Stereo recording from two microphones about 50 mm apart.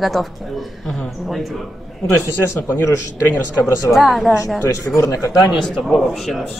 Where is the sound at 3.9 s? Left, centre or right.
Centre.